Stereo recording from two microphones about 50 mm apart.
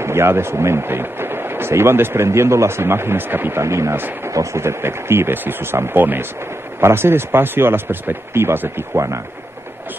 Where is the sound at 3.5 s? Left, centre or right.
Right.